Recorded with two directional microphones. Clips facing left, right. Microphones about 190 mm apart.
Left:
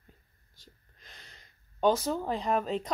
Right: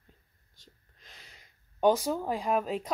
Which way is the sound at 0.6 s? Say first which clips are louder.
Left 1 dB; centre (ahead or behind).